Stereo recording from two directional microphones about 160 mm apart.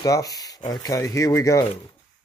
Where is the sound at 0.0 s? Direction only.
20° left (ahead or behind).